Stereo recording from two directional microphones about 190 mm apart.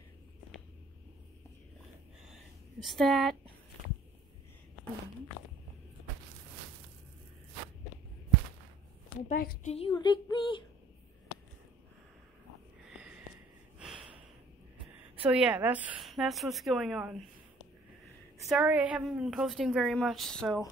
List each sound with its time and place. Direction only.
2.3 s a sound: centre (ahead or behind)
9.3 s a woman's voice: 45° left (ahead or behind)
9.8 s a sound: 25° left (ahead or behind)
12.9 s sniff: 5° right (ahead or behind)
13.7 s snort: 5° right (ahead or behind)
15.2 s a woman's voice: 5° right (ahead or behind)
18.5 s a woman's voice: 5° right (ahead or behind)